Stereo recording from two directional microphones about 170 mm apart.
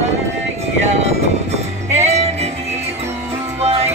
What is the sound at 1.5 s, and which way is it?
Music, 40° right (ahead or behind).